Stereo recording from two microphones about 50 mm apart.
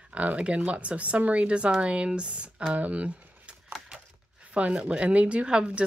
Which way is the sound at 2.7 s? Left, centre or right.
Right.